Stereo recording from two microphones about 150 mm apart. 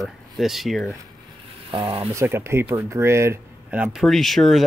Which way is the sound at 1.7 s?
35° right (ahead or behind).